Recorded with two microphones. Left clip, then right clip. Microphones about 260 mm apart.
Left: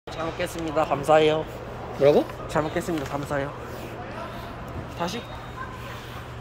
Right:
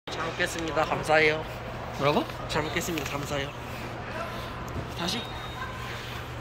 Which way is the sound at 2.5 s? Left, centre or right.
Left.